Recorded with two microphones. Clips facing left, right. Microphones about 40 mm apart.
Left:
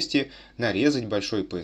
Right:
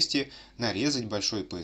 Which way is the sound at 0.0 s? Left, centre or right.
Left.